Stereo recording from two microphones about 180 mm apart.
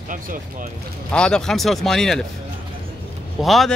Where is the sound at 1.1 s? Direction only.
5° left (ahead or behind).